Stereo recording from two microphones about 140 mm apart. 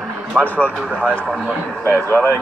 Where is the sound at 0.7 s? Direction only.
10° right (ahead or behind).